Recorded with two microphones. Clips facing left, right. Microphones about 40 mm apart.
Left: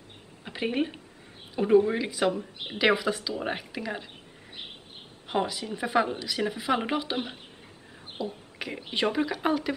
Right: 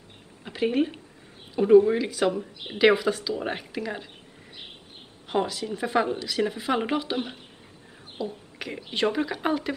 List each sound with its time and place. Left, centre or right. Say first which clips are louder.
0.4 s speech: right 4 dB; centre
5.3 s speech: right 2 dB; centre